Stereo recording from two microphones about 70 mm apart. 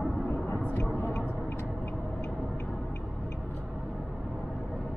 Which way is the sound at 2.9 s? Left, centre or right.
Left.